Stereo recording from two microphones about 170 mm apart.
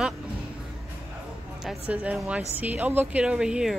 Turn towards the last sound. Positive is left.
turn(degrees=-5)  # may be behind; listen again after turning